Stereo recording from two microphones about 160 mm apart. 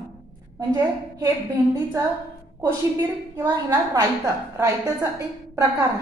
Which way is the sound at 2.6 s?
15° right (ahead or behind).